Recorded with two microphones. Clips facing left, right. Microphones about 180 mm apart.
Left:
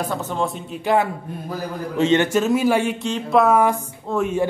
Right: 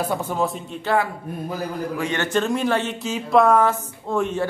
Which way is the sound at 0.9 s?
15° left (ahead or behind).